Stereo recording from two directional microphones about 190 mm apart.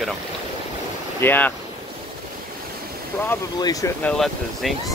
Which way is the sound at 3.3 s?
20° left (ahead or behind).